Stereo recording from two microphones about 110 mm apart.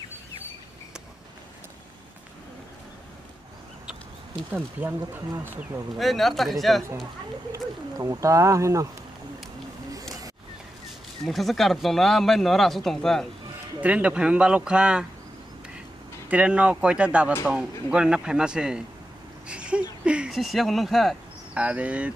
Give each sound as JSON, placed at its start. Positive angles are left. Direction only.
{"t": 5.9, "sound": "speech", "side_deg": 0}
{"t": 7.5, "sound": "speech", "side_deg": -30}
{"t": 11.2, "sound": "speech", "side_deg": 0}
{"t": 13.7, "sound": "speech", "side_deg": -10}
{"t": 16.3, "sound": "speech", "side_deg": -10}
{"t": 19.4, "sound": "a sound", "side_deg": -10}
{"t": 21.5, "sound": "speech", "side_deg": -10}